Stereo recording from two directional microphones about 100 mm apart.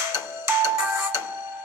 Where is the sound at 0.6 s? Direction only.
20° right (ahead or behind).